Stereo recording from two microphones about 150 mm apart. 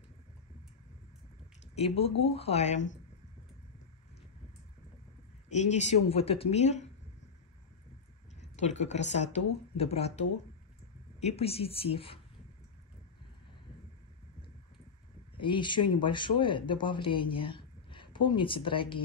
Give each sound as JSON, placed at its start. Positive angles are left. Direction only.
{"t": 1.8, "sound": "speech", "side_deg": 40}
{"t": 5.5, "sound": "speech", "side_deg": 50}
{"t": 8.4, "sound": "speech", "side_deg": 50}
{"t": 15.3, "sound": "speech", "side_deg": 35}